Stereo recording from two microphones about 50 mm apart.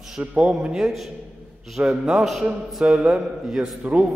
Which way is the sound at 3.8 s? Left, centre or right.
Right.